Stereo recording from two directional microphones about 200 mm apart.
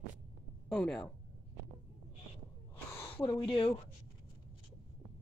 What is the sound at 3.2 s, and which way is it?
Speech, 20° left (ahead or behind).